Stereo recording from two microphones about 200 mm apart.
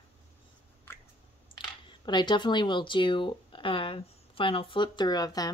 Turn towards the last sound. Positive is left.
turn(degrees=20)  # may be behind; listen again after turning